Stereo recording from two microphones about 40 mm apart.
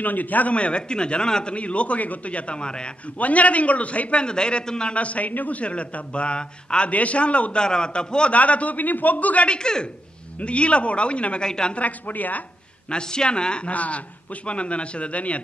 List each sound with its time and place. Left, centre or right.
0.0 s a man's voice: left
0.6 s a man's voice: left
1.5 s a man's voice: left
3.2 s a man's voice: left
4.9 s a man's voice: left
6.9 s a man's voice: left
7.6 s a man's voice: left
8.3 s a man's voice: left
9.5 s a man's voice: left
11.4 s a woman's voice: centre
11.7 s a man's voice: left
12.9 s a man's voice: left
13.7 s a man's voice: left